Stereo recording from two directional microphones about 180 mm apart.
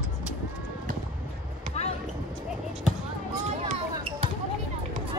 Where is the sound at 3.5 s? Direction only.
35° right (ahead or behind).